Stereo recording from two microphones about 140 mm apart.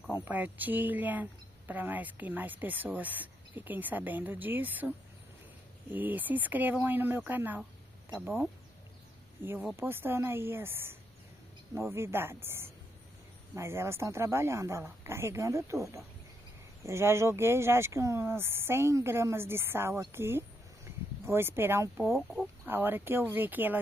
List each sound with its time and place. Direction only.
0.1 s speech: 15° right (ahead or behind)
13.6 s speech: 20° right (ahead or behind)